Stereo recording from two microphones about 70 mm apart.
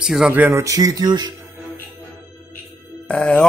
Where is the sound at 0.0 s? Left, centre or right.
Centre.